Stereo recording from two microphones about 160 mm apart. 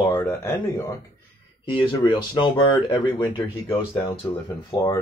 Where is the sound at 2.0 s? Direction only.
30° left (ahead or behind).